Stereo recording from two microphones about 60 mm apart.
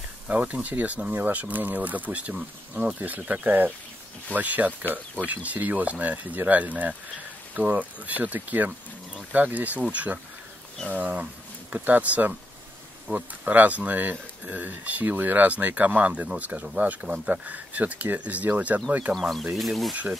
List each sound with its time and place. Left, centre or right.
0.3 s speech: right
19.1 s speech: centre